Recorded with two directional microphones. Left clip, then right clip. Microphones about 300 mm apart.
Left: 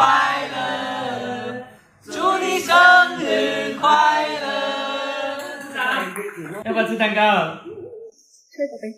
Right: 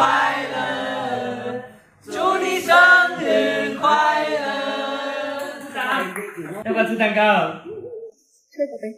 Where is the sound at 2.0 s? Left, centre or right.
Centre.